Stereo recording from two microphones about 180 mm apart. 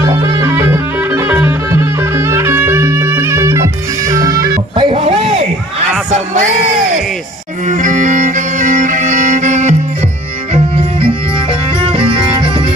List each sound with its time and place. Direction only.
0.0 s music: 20° right (ahead or behind)
7.6 s music: 45° right (ahead or behind); by 12.6 s 30° right (ahead or behind)